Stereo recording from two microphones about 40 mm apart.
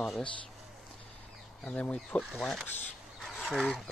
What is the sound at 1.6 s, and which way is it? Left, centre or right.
Speech, left.